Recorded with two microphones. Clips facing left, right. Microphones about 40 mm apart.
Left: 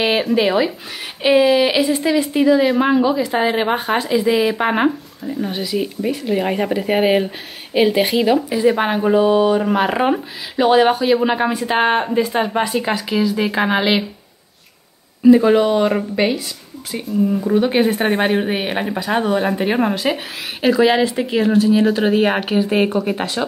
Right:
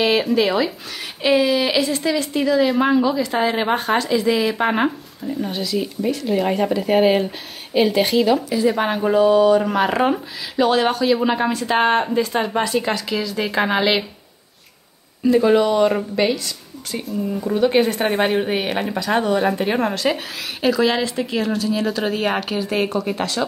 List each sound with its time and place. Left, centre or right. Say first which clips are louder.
0.2 s speech: left 2 dB; centre
15.2 s speech: left 4 dB; centre